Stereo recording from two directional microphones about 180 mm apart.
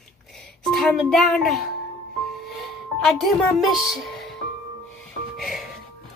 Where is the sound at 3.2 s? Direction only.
Centre (ahead or behind).